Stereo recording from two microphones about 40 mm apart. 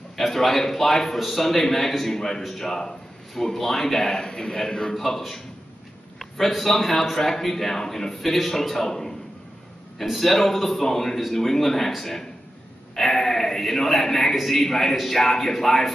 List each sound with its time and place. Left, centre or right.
0.1 s a man's voice: centre
6.1 s a sound: centre
6.5 s a man's voice: centre